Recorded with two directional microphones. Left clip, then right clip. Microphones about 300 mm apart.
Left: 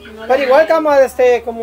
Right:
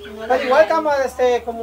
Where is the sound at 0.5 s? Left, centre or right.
Left.